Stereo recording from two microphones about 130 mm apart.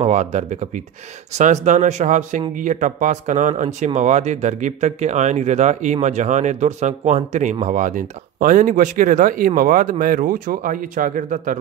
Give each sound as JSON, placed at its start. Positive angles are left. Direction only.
{"t": 0.0, "sound": "speech", "side_deg": -65}
{"t": 7.6, "sound": "speech", "side_deg": -80}